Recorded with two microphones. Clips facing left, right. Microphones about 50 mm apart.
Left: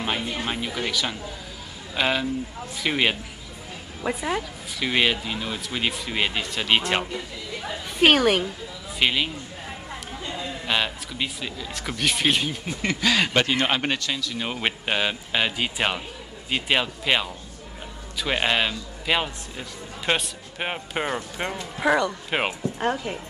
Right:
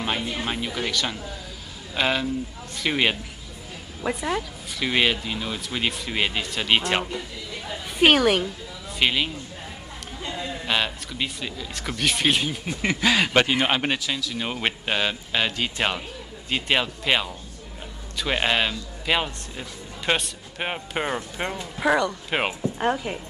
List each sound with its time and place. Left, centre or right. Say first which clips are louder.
0.0 s speech: even; centre
10.3 s speech: even; centre
12.8 s a man's voice: right 1 dB; centre